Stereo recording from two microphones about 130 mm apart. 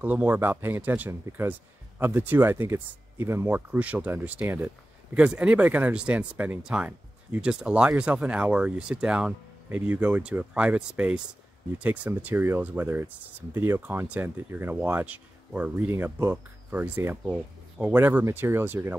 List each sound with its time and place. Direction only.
0.0 s speech: 10° right (ahead or behind)